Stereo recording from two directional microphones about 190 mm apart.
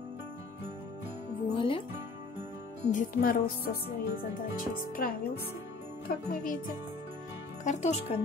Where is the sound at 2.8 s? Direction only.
45° left (ahead or behind).